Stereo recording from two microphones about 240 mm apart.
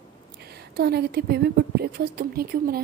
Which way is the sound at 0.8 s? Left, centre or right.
Right.